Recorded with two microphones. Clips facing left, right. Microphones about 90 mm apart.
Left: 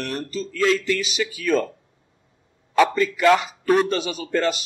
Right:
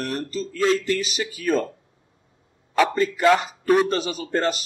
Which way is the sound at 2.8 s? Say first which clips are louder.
Left 1 dB; 35° right (ahead or behind).